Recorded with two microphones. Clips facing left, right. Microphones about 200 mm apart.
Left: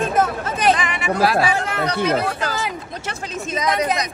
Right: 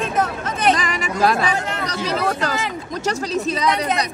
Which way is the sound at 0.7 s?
40° right (ahead or behind).